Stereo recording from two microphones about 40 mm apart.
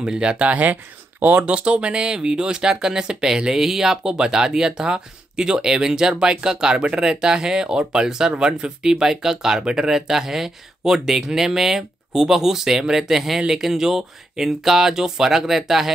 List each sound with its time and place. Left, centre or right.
0.0 s speech: right
0.5 s speech: right
1.4 s speech: right; by 15.9 s centre